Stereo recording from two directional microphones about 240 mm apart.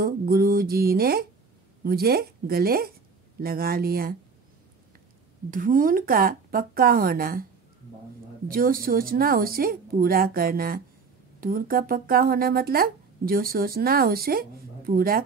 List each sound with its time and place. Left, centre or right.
0.0 s speech: right
5.5 s speech: right
8.5 s speech: right